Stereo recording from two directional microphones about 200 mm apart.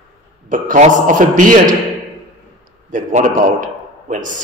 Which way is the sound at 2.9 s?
40° right (ahead or behind).